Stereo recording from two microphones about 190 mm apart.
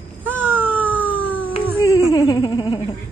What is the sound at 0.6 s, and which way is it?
Cat, 10° right (ahead or behind).